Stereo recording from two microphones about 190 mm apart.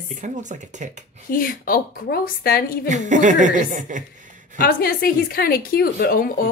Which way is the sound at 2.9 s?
40° right (ahead or behind).